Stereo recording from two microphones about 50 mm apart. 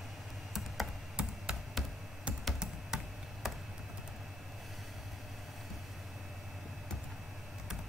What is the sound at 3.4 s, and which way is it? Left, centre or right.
Computer keyboard, centre.